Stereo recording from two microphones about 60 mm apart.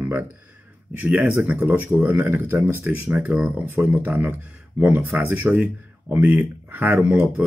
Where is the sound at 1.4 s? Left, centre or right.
Right.